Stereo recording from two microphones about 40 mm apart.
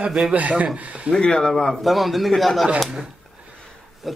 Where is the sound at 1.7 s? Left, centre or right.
Centre.